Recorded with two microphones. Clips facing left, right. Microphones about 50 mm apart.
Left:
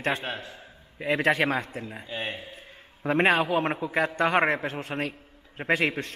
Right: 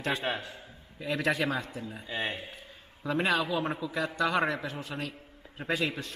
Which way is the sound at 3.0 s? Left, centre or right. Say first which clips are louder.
Left 6 dB; left.